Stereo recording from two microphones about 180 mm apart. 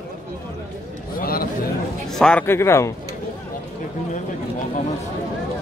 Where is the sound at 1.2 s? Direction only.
55° left (ahead or behind).